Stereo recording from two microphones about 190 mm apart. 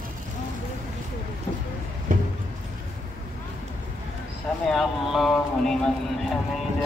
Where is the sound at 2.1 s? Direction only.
45° right (ahead or behind).